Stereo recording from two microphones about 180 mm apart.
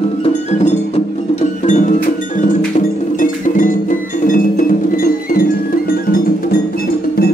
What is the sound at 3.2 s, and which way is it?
Music, 50° left (ahead or behind).